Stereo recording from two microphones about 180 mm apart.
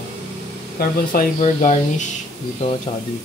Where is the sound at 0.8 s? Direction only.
50° left (ahead or behind).